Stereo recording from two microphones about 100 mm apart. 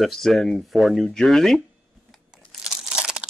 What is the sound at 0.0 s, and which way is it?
Speech, centre (ahead or behind).